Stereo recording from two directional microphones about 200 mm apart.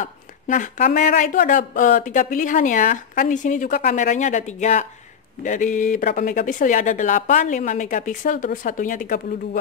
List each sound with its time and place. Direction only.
0.0 s speech: 40° left (ahead or behind)